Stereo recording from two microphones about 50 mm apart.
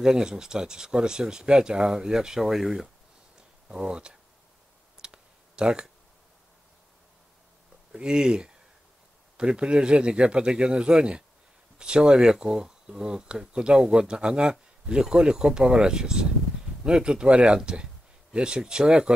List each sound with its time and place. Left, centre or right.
0.0 s speech: centre
3.6 s speech: centre
5.0 s clicking: centre
7.9 s speech: centre